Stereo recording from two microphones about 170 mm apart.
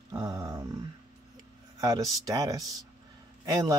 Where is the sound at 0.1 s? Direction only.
20° right (ahead or behind).